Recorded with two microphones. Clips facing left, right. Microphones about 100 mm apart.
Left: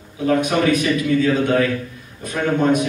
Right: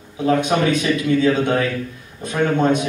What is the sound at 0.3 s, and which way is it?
A man's voice, 25° right (ahead or behind).